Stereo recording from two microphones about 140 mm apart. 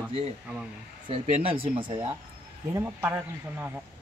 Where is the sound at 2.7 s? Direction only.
20° right (ahead or behind).